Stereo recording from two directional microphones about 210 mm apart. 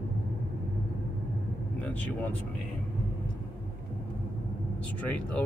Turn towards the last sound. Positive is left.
turn(degrees=5)  # may be behind; listen again after turning